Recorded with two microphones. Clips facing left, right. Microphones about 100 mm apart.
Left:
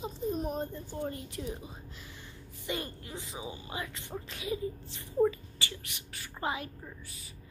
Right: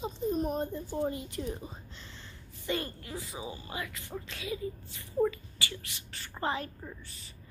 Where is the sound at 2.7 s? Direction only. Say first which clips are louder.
Right 3 dB; 20° left (ahead or behind).